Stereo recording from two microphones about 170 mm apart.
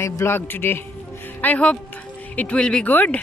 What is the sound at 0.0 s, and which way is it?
Speech, 15° left (ahead or behind).